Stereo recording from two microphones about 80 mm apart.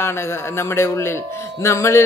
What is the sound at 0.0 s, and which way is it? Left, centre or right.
Speech, left.